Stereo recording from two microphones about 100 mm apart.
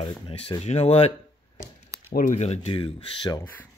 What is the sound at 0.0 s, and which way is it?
Speech, 70° left (ahead or behind).